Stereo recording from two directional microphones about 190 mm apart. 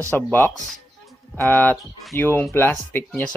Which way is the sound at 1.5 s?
10° left (ahead or behind).